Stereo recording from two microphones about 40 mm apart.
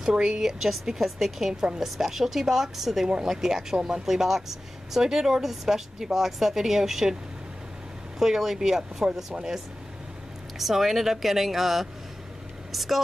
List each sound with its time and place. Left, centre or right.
0.0 s speech: centre
1.5 s a woman's voice: right
1.8 s speech: centre
8.2 s speech: centre
10.6 s speech: centre